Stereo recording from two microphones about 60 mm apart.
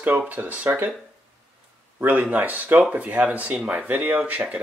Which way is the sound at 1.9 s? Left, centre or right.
Right.